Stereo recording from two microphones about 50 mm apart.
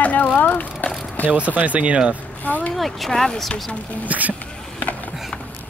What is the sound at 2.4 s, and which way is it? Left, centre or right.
Speech, left.